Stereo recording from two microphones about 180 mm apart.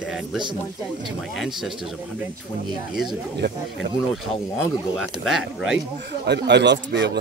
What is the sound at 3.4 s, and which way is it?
Speech, 80° right.